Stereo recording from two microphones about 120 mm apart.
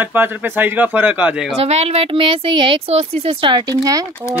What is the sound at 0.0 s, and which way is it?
Speech, 15° right (ahead or behind).